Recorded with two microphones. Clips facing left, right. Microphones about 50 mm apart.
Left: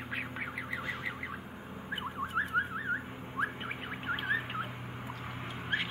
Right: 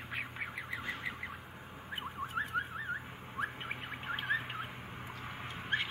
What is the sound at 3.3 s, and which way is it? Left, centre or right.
Bird, centre.